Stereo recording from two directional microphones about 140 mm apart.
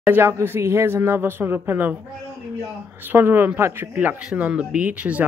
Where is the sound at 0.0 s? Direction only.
15° right (ahead or behind).